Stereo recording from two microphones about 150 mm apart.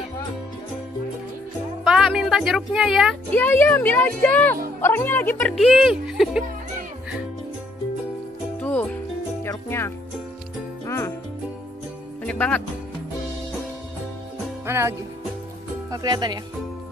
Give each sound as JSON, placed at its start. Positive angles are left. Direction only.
{"t": 1.9, "sound": "speech", "side_deg": 0}
{"t": 3.3, "sound": "speech", "side_deg": 15}
{"t": 8.5, "sound": "music", "side_deg": 10}
{"t": 12.2, "sound": "speech", "side_deg": 10}
{"t": 14.7, "sound": "music", "side_deg": -15}
{"t": 15.9, "sound": "speech", "side_deg": -30}